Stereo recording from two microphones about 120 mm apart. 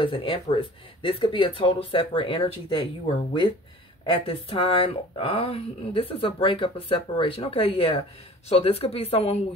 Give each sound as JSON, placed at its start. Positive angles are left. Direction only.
{"t": 0.0, "sound": "speech", "side_deg": 45}
{"t": 4.0, "sound": "speech", "side_deg": 50}